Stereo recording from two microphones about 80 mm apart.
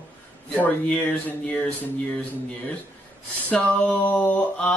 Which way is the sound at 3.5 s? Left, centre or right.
Centre.